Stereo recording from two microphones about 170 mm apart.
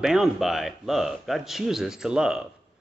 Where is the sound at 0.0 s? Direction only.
Centre (ahead or behind).